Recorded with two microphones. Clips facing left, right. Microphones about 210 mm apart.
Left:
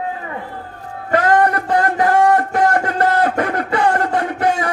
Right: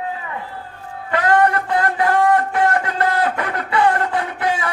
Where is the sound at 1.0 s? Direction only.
45° left (ahead or behind).